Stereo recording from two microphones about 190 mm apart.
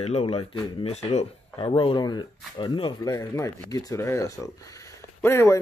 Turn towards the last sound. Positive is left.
turn(degrees=15)  # may be behind; listen again after turning